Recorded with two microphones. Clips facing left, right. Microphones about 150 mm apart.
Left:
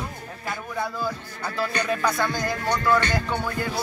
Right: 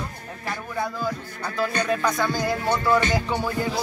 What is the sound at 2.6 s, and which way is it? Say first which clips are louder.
Music: even; 15° right (ahead or behind).